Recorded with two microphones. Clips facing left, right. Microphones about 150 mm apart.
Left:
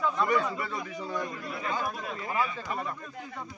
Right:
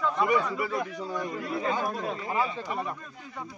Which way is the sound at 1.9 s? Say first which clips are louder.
Right 2 dB; 25° right (ahead or behind).